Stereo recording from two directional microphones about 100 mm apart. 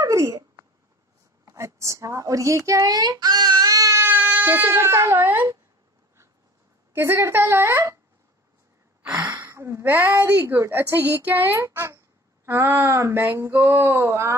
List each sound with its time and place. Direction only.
0.0 s a sound: 35° right (ahead or behind)
1.4 s speech: 30° right (ahead or behind)
4.0 s speech: 20° right (ahead or behind)
6.9 s a woman's voice: 25° right (ahead or behind)
9.2 s a woman's voice: 25° right (ahead or behind)